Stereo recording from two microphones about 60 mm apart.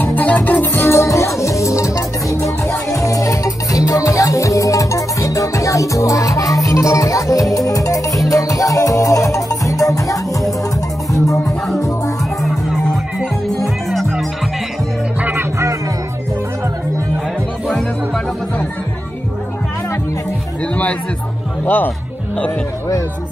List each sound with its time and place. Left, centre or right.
0.0 s music: left
0.8 s music: left
11.4 s music: centre
17.6 s music: centre
21.6 s speech: left